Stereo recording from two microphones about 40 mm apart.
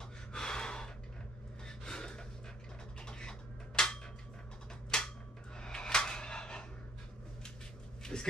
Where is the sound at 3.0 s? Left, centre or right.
Left.